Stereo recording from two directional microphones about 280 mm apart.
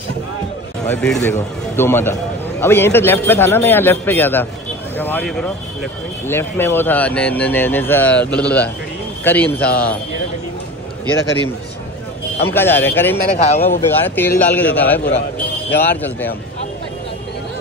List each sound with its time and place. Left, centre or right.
0.8 s a man's voice: centre
12.4 s a man's voice: centre
13.4 s speech: left
13.7 s a man's voice: centre